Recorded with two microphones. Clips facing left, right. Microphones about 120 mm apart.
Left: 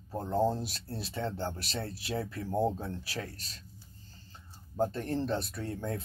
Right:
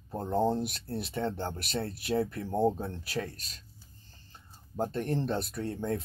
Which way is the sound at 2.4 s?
15° right (ahead or behind).